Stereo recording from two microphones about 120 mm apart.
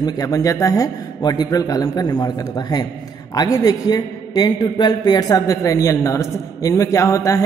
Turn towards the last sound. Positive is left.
turn(degrees=25)  # may be behind; listen again after turning